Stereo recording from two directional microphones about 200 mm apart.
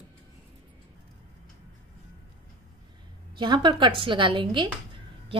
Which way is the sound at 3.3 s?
25° right (ahead or behind).